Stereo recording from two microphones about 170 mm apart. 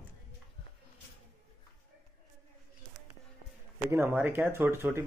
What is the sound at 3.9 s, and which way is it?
Speech, 15° right (ahead or behind).